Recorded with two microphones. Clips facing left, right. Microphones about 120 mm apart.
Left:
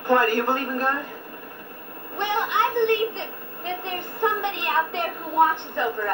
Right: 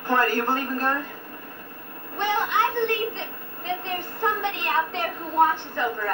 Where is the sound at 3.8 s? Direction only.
15° left (ahead or behind).